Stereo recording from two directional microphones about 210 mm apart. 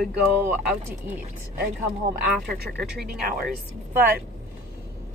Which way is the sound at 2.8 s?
Centre (ahead or behind).